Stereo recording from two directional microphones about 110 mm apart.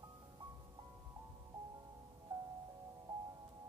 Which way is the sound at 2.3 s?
25° right (ahead or behind).